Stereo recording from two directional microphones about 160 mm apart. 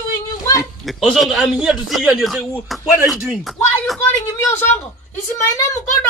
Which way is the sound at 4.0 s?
20° left (ahead or behind).